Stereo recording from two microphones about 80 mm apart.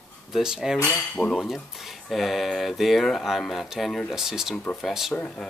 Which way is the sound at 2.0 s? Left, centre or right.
Centre.